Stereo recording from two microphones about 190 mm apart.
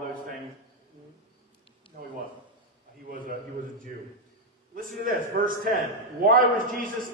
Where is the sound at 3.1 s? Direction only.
45° right (ahead or behind).